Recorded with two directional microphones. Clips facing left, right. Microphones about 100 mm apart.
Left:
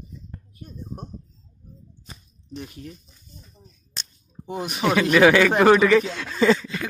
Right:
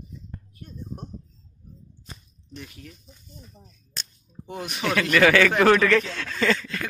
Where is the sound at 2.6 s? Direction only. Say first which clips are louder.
Left 5 dB; 30° left (ahead or behind).